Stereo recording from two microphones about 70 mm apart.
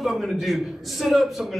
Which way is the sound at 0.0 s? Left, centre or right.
Centre.